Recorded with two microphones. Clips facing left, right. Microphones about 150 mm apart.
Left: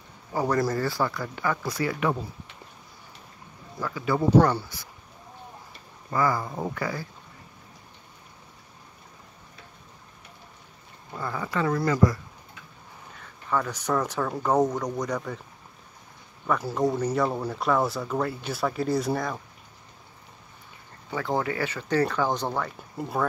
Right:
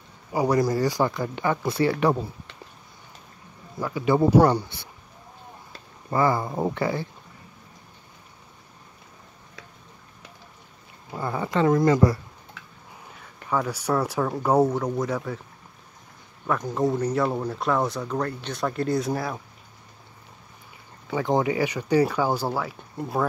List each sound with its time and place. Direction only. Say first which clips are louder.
0.3 s speech: right 3 dB; 10° right (ahead or behind); by 2.1 s 30° right (ahead or behind)
3.8 s speech: right 4 dB; 20° right (ahead or behind)
6.0 s speech: right 3 dB; 25° right (ahead or behind)
11.1 s speech: right 4 dB; 25° right (ahead or behind)
13.2 s speech: right 2 dB; 10° right (ahead or behind)
16.4 s speech: right 1 dB; centre (ahead or behind)
21.1 s speech: right 4 dB; 20° right (ahead or behind); by 23.2 s centre (ahead or behind)